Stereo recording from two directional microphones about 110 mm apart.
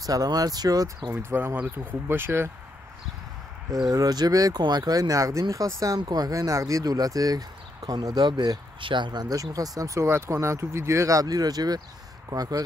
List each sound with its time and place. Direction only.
0.0 s speech: 35° right (ahead or behind)
1.1 s speech: 20° right (ahead or behind)
3.9 s speech: 35° right (ahead or behind)